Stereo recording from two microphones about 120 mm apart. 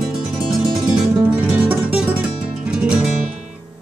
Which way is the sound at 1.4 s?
10° right (ahead or behind).